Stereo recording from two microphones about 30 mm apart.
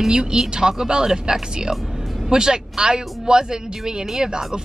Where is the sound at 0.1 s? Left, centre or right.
Right.